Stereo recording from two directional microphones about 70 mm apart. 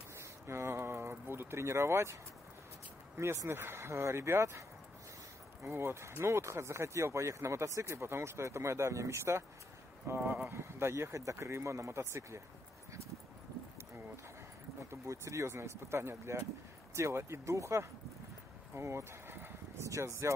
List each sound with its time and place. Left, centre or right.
0.2 s a sound: right
3.2 s speech: right
10.0 s speech: right
10.5 s speech: right
14.9 s speech: right
18.8 s a sound: right
19.9 s speech: right